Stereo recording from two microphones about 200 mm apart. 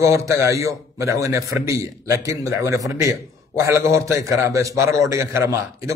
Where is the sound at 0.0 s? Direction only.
15° right (ahead or behind).